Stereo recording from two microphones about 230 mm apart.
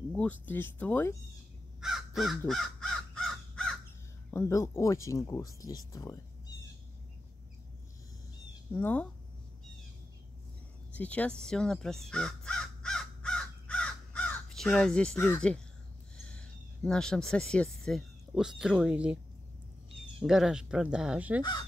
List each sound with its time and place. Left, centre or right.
0.1 s speech: centre
1.8 s crow: centre
4.3 s speech: centre
8.7 s speech: centre
10.9 s crow: centre
16.3 s speech: centre
20.2 s speech: centre
21.4 s speech: centre